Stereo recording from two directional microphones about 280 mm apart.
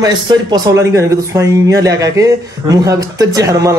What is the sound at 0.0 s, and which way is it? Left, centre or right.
Speech, centre.